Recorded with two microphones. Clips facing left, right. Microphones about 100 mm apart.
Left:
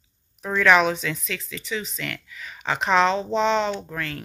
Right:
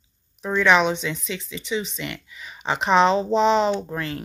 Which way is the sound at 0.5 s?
20° right (ahead or behind).